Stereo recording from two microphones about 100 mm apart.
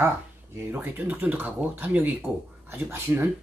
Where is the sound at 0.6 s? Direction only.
20° right (ahead or behind).